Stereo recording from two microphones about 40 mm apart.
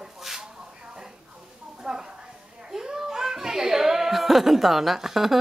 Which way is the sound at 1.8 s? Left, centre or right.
Centre.